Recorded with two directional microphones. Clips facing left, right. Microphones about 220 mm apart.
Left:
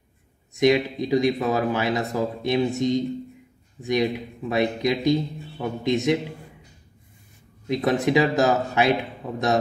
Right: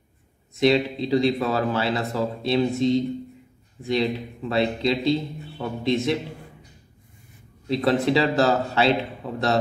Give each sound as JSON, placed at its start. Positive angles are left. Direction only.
{"t": 0.6, "sound": "speech", "side_deg": 15}
{"t": 7.6, "sound": "speech", "side_deg": 15}